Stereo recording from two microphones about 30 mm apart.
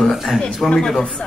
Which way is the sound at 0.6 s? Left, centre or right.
Centre.